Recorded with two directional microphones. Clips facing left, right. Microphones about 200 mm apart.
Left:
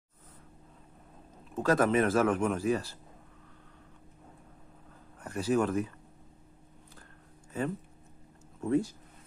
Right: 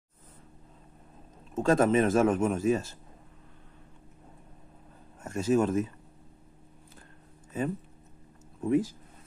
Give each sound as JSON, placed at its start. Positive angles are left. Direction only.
{"t": 1.5, "sound": "a man's voice", "side_deg": -25}
{"t": 5.2, "sound": "speech", "side_deg": -25}
{"t": 7.5, "sound": "a man's voice", "side_deg": -20}